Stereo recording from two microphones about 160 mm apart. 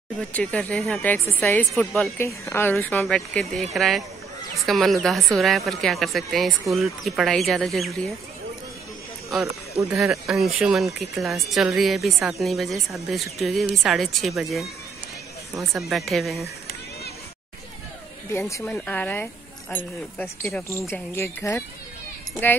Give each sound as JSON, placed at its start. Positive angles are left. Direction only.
{"t": 0.2, "sound": "speech", "side_deg": 5}
{"t": 9.8, "sound": "speech", "side_deg": 0}
{"t": 15.9, "sound": "speech", "side_deg": 0}
{"t": 18.3, "sound": "speech", "side_deg": 15}